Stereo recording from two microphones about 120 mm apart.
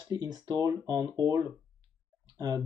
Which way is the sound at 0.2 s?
35° right (ahead or behind).